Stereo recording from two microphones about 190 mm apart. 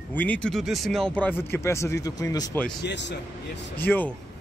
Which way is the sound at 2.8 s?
65° left (ahead or behind).